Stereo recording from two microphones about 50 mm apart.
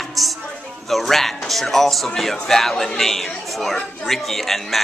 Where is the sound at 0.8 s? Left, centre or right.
Centre.